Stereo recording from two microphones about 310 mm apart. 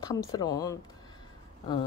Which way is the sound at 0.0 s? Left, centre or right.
Centre.